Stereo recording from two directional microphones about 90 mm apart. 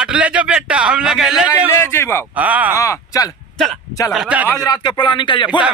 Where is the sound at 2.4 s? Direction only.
15° right (ahead or behind).